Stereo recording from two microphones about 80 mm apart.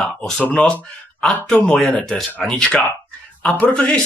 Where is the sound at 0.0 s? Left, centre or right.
Centre.